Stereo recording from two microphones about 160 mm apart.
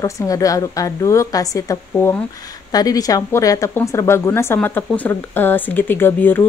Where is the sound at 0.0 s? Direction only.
20° left (ahead or behind).